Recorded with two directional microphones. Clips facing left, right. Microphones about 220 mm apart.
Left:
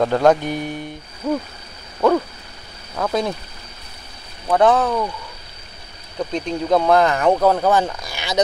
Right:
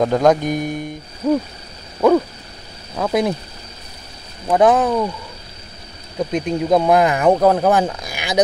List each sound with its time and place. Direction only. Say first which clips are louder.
0.0 s speech: right 1 dB; 10° right (ahead or behind)
2.0 s a sound: right 3 dB; 10° right (ahead or behind)
2.9 s speech: right 3 dB; 10° right (ahead or behind)
4.5 s speech: right 2 dB; 15° right (ahead or behind)
6.1 s speech: right 3 dB; 10° right (ahead or behind)